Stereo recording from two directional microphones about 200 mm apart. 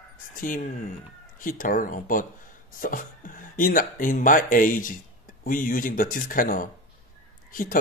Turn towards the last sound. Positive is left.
turn(degrees=45)  # may be behind; listen again after turning